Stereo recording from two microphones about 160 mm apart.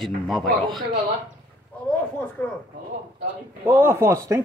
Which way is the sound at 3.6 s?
10° right (ahead or behind).